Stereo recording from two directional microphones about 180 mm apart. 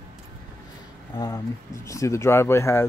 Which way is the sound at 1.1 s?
20° left (ahead or behind).